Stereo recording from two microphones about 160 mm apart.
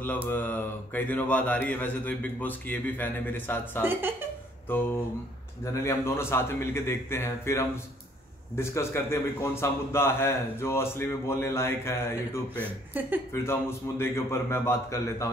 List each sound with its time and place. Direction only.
0.3 s a man's voice: 10° left (ahead or behind)
3.8 s speech: 15° right (ahead or behind)
5.7 s a man's voice: 20° left (ahead or behind)